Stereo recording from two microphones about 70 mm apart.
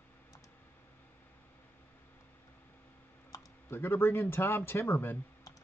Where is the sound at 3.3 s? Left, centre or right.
Left.